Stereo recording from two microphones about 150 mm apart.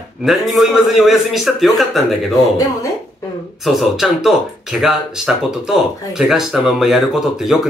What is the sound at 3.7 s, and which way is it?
Speech, centre (ahead or behind).